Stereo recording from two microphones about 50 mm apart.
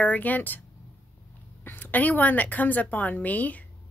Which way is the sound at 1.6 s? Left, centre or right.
Left.